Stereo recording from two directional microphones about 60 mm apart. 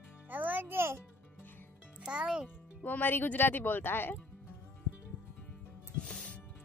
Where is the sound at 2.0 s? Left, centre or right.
Centre.